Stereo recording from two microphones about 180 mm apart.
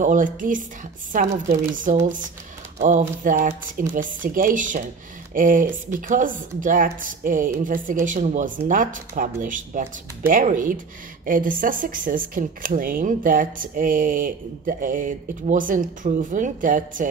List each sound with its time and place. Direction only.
0.0 s speech: 45° right (ahead or behind)